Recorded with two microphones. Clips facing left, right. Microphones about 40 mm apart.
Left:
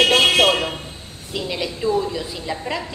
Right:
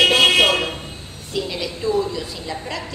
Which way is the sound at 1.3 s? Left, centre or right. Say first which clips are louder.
Even; centre.